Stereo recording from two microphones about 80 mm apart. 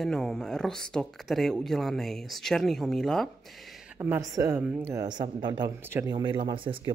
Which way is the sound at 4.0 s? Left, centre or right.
Right.